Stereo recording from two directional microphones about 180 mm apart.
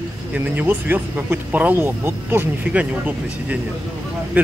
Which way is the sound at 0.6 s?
10° right (ahead or behind).